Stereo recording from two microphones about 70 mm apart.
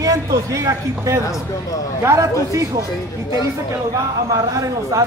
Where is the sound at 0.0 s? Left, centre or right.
Right.